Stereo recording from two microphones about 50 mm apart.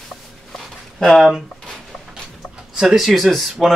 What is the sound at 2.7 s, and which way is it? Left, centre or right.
Speech, centre.